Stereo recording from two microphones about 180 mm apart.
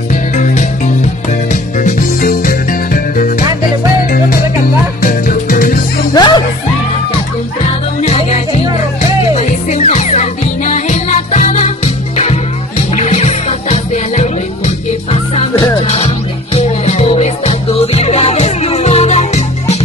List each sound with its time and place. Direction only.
0.1 s music: 45° left (ahead or behind)
5.0 s music: 50° left (ahead or behind)
6.1 s music: 25° left (ahead or behind)
8.0 s music: 35° left (ahead or behind)
16.5 s music: 35° left (ahead or behind)